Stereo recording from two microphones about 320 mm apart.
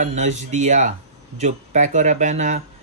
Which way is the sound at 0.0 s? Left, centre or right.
Right.